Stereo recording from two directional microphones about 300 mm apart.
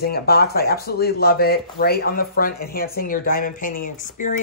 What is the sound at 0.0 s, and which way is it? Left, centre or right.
Speech, left.